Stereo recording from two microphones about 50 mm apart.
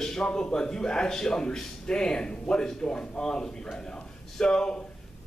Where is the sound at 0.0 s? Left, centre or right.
Centre.